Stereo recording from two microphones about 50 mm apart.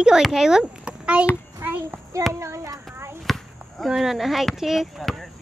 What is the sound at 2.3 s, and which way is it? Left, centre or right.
Child singing, right.